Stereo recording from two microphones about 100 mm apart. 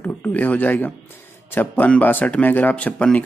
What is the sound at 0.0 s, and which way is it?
Speech, 15° left (ahead or behind).